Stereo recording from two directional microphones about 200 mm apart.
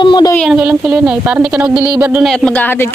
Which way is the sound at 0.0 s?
25° left (ahead or behind).